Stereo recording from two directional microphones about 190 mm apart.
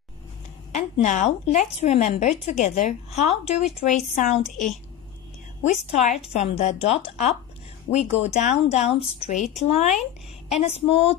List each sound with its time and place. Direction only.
0.7 s speech: 40° left (ahead or behind)
5.6 s speech: 35° left (ahead or behind)